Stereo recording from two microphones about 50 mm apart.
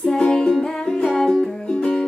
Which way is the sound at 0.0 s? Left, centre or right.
Centre.